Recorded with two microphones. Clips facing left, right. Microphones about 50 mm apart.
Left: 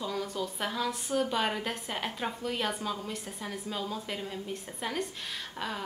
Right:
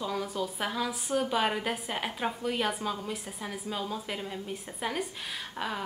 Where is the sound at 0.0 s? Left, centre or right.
Centre.